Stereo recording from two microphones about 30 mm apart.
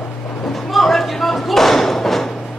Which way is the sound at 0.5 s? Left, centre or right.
Centre.